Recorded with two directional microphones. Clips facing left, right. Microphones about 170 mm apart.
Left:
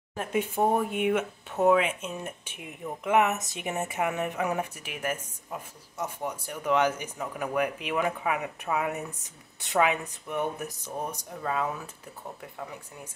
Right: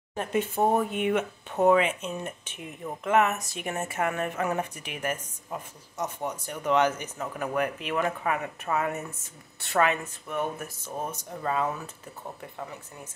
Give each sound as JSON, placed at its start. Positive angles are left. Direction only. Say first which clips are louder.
{"t": 0.1, "sound": "speech", "louder": "right 1 dB", "side_deg": 5}
{"t": 11.4, "sound": "speech", "louder": "right 2 dB", "side_deg": 0}